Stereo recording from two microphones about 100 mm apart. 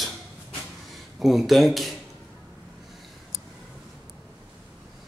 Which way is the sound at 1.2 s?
Centre (ahead or behind).